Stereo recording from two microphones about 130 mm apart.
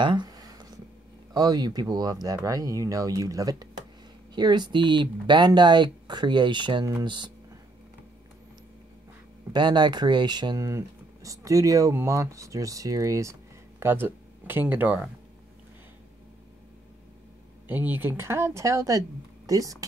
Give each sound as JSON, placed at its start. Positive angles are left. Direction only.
{"t": 0.0, "sound": "a sound", "side_deg": -35}
{"t": 1.3, "sound": "speech", "side_deg": -30}
{"t": 9.5, "sound": "speech", "side_deg": -35}
{"t": 17.6, "sound": "speech", "side_deg": -15}